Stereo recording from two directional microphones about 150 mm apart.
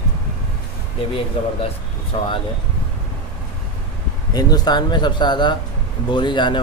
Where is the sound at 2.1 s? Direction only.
35° left (ahead or behind).